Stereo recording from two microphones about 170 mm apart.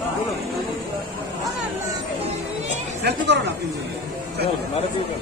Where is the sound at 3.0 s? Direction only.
85° right.